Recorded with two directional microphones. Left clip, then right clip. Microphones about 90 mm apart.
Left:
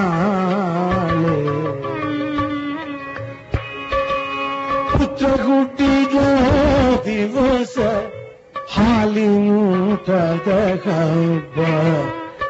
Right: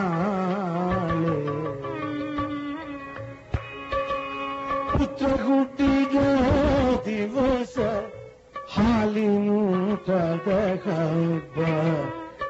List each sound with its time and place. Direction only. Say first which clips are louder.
0.0 s music: left 7 dB; 20° left (ahead or behind)